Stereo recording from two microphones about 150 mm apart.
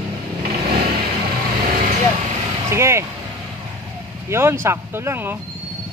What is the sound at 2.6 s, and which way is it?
Speech, 20° right (ahead or behind).